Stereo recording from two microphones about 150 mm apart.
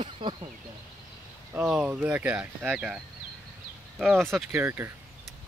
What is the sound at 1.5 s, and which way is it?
Speech, 10° right (ahead or behind).